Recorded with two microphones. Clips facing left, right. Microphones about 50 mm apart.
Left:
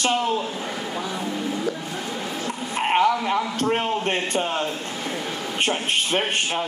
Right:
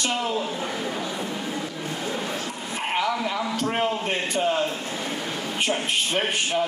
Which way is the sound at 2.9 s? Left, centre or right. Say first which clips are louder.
Left 6 dB; left.